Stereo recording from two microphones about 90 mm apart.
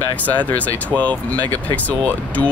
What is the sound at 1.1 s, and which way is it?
Speech, 15° left (ahead or behind).